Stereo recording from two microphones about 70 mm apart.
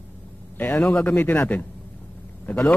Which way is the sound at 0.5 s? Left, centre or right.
Left.